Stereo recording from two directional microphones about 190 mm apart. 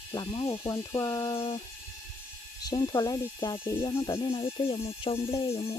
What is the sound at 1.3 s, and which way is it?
Speech, 30° left (ahead or behind).